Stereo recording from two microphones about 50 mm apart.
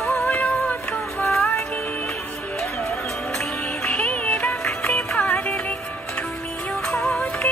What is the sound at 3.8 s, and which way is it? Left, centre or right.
Music, left.